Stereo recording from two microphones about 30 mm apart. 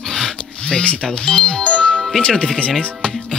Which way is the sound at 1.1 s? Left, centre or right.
Left.